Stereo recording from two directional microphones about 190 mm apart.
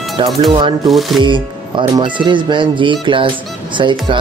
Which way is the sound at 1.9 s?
25° right (ahead or behind).